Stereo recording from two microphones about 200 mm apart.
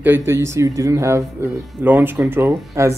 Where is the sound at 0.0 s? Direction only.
10° right (ahead or behind).